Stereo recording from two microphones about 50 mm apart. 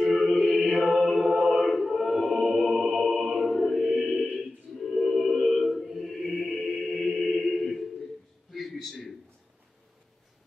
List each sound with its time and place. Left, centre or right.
0.0 s chant: centre
0.8 s mantra: centre
1.7 s music: centre
6.4 s choir: centre
8.5 s a sound: centre